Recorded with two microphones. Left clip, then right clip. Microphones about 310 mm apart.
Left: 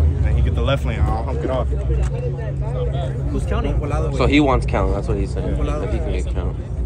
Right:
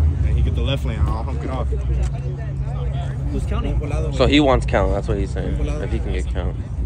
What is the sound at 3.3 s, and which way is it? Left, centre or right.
Speech, centre.